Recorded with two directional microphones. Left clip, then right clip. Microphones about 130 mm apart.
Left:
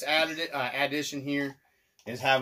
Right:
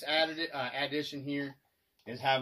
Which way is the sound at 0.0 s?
50° left (ahead or behind).